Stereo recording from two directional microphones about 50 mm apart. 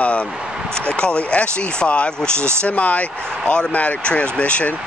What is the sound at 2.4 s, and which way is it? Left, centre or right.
Speech, right.